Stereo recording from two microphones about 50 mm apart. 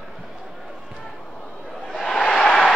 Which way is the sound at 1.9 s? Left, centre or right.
Centre.